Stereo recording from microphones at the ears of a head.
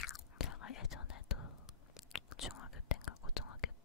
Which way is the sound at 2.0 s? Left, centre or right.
Left.